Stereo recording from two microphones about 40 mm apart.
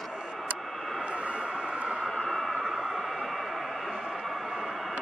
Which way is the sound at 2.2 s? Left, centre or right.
Centre.